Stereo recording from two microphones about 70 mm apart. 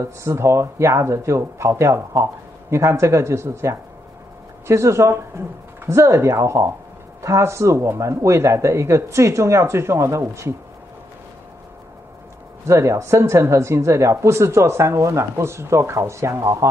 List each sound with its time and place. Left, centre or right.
0.0 s speech: right
12.6 s speech: right